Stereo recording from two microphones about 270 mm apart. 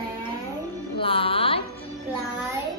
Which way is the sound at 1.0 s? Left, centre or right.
Centre.